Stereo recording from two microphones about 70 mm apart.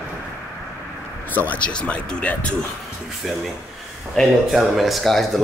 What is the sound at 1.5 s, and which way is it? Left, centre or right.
Speech, centre.